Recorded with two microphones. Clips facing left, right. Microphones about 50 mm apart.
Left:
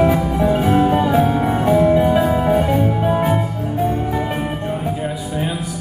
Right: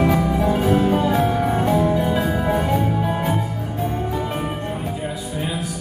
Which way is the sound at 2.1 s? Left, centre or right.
Centre.